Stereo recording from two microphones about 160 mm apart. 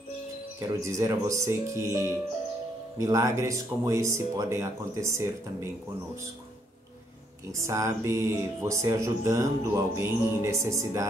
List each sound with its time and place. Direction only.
0.6 s speech: 20° right (ahead or behind)
7.5 s speech: 20° right (ahead or behind)